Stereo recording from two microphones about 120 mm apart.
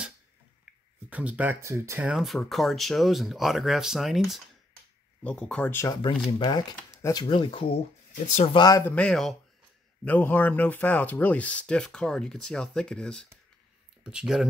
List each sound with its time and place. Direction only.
1.1 s speech: 10° right (ahead or behind)
1.6 s speech: 25° right (ahead or behind)
2.1 s speech: centre (ahead or behind)
5.2 s speech: 10° left (ahead or behind)
6.0 s speech: 45° left (ahead or behind)
7.0 s speech: 25° left (ahead or behind)
7.2 s speech: 45° left (ahead or behind)
8.1 s speech: 75° left (ahead or behind)
8.5 s speech: 30° left (ahead or behind)
8.8 s speech: 10° left (ahead or behind)
10.0 s speech: 15° left (ahead or behind)
14.0 s speech: 5° right (ahead or behind)